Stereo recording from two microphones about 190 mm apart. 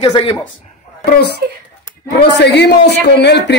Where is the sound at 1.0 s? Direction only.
60° left (ahead or behind).